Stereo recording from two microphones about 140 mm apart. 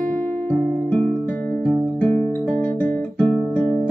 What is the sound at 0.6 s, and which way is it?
Music, 60° right (ahead or behind).